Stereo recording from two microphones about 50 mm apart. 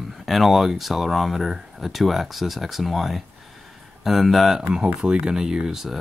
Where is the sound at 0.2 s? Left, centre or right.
Centre.